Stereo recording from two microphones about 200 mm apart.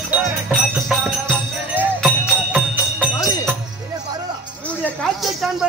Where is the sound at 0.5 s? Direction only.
Centre (ahead or behind).